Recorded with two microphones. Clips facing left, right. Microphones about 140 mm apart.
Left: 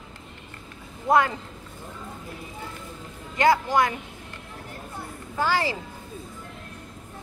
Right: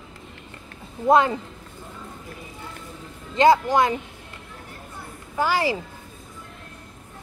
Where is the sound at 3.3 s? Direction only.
20° right (ahead or behind).